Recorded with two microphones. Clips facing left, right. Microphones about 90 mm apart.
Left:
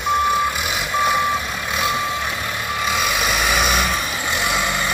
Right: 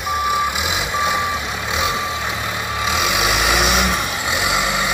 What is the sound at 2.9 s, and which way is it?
Vehicle, 15° right (ahead or behind).